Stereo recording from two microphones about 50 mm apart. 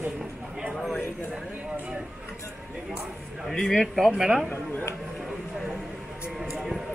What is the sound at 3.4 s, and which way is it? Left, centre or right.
Speech, centre.